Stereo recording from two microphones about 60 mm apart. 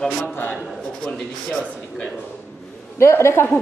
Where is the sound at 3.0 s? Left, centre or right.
Left.